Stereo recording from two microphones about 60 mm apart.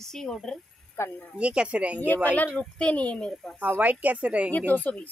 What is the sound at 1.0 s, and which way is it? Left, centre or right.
Speech, left.